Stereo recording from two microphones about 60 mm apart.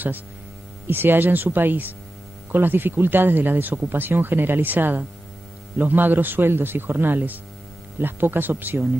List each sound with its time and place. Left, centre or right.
0.8 s speech: right